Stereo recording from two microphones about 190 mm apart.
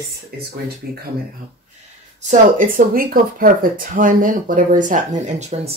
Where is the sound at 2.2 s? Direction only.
40° right (ahead or behind).